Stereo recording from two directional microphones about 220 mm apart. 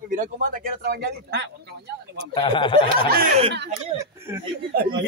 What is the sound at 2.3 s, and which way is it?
Speech, 20° left (ahead or behind).